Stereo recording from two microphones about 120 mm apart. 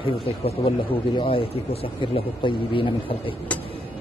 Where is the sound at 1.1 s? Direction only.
50° left (ahead or behind).